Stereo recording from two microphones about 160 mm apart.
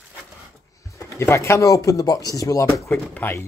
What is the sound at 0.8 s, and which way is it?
Speech, 20° left (ahead or behind).